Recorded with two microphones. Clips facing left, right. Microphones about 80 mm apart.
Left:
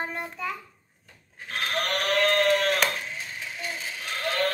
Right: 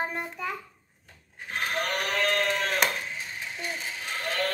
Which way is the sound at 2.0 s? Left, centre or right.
Centre.